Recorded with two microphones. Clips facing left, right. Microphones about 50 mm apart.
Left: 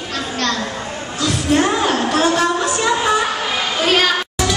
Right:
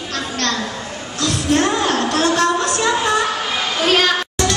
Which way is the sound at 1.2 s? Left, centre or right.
Centre.